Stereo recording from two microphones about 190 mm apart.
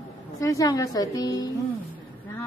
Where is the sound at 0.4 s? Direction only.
15° left (ahead or behind).